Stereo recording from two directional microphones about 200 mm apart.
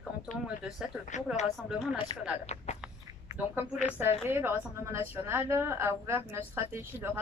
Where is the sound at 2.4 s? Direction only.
35° left (ahead or behind).